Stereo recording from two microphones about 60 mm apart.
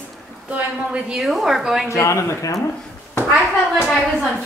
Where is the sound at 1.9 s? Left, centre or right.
Left.